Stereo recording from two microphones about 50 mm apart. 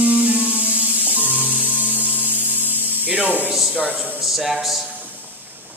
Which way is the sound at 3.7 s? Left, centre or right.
Right.